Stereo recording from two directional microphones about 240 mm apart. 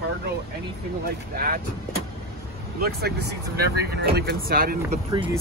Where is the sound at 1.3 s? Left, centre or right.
Right.